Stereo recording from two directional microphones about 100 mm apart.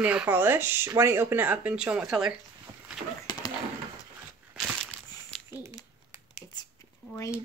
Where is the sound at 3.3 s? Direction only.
45° left (ahead or behind).